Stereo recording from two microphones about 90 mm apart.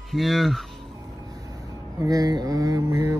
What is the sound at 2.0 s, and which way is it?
Mantra, 45° right (ahead or behind).